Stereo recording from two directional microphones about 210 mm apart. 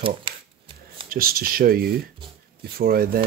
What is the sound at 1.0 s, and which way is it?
Speech, 45° right (ahead or behind).